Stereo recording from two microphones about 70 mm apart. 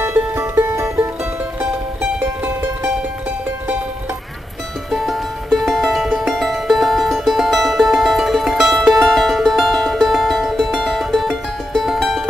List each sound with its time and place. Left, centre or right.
0.0 s music: right
4.9 s music: centre